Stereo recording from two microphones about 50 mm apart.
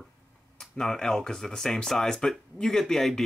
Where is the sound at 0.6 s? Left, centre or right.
Centre.